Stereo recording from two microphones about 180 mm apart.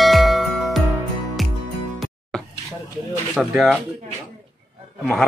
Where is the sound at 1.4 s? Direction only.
Centre (ahead or behind).